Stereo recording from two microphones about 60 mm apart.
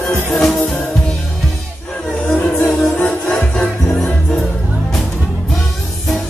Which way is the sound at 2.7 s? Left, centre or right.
Centre.